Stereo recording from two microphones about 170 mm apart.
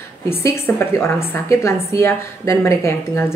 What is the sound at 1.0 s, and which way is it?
Speech, 15° left (ahead or behind).